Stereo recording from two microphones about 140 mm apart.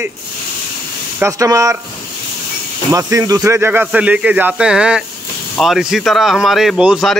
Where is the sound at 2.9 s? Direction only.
25° right (ahead or behind).